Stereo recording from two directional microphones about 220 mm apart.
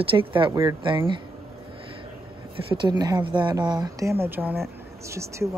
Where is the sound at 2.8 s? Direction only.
20° right (ahead or behind).